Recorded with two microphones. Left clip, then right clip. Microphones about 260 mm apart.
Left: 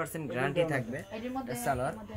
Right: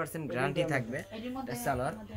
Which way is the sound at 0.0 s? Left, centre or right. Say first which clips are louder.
Even; centre.